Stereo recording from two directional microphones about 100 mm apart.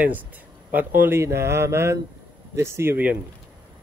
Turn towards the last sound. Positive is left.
turn(degrees=-20)  # may be behind; listen again after turning